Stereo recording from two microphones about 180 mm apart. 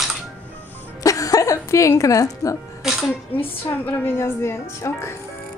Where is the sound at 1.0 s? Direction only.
20° left (ahead or behind).